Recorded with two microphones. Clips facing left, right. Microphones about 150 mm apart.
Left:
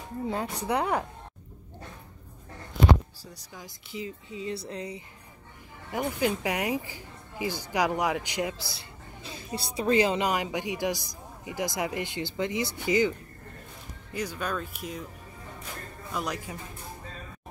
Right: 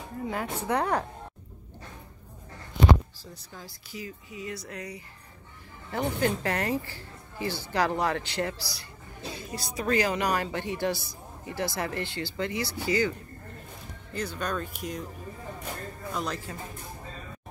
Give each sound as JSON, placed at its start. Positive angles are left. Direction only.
{"t": 0.3, "sound": "speech", "side_deg": 20}
{"t": 3.3, "sound": "speech", "side_deg": 15}
{"t": 5.9, "sound": "speech", "side_deg": 10}
{"t": 14.1, "sound": "speech", "side_deg": 10}
{"t": 16.1, "sound": "speech", "side_deg": 10}